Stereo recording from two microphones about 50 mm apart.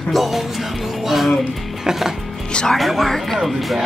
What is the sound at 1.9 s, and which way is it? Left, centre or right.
Music, centre.